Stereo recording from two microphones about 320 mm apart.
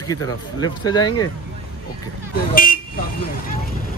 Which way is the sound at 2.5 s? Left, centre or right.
Left.